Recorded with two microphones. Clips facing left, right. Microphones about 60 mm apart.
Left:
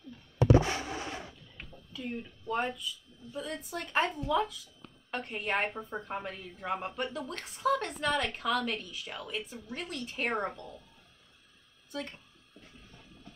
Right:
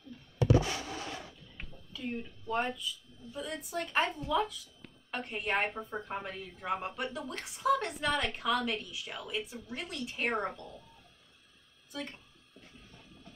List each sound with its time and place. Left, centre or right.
0.4 s a sound: left
2.0 s a woman's voice: centre
11.9 s speech: centre